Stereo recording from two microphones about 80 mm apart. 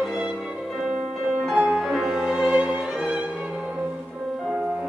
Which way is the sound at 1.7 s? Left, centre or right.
Centre.